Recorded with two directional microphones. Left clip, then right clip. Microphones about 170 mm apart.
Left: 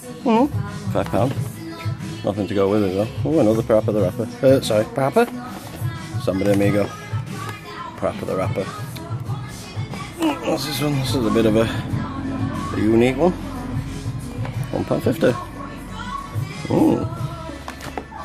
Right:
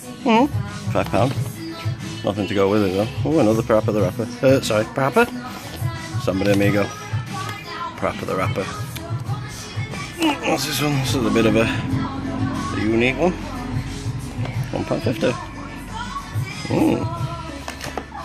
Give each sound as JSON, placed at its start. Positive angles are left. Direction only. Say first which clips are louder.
{"t": 0.2, "sound": "a child's voice", "louder": "right 1 dB", "side_deg": 5}
{"t": 8.0, "sound": "speech", "louder": "left 1 dB", "side_deg": 0}
{"t": 10.2, "sound": "speech", "louder": "right 1 dB", "side_deg": 0}
{"t": 12.9, "sound": "speech", "louder": "left 2 dB", "side_deg": 30}
{"t": 14.7, "sound": "music", "louder": "left 2 dB", "side_deg": 20}
{"t": 16.7, "sound": "music", "louder": "left 2 dB", "side_deg": 20}